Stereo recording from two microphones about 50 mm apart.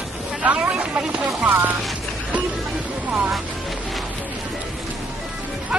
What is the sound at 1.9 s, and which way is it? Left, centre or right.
Boat, right.